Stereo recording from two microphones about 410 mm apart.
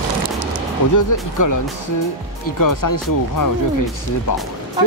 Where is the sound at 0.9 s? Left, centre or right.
Left.